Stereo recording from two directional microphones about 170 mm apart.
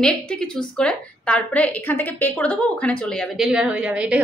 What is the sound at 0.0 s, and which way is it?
A woman's voice, 5° left (ahead or behind).